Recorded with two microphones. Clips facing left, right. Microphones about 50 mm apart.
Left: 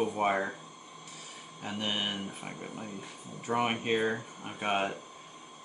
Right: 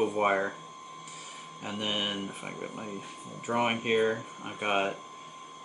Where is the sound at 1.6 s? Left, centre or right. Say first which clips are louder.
Right 1 dB; centre.